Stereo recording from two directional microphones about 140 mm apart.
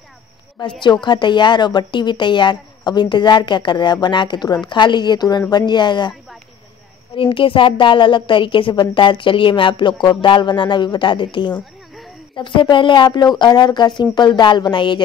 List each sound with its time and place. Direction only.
0.6 s speech: 35° left (ahead or behind)
7.2 s speech: 40° left (ahead or behind)